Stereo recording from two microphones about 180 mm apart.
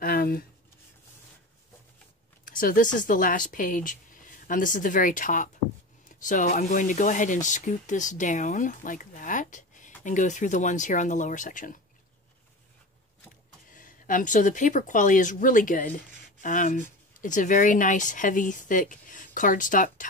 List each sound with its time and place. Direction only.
0.0 s a sound: 55° left (ahead or behind)
2.4 s speech: 50° left (ahead or behind)
13.7 s speech: 45° left (ahead or behind)